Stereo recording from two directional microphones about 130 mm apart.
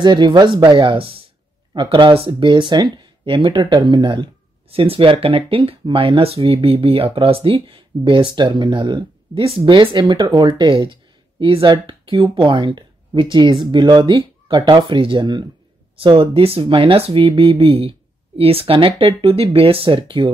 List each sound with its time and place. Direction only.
0.0 s speech: 35° right (ahead or behind)